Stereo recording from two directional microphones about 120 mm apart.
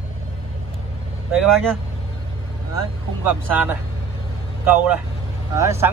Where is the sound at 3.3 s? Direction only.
15° right (ahead or behind).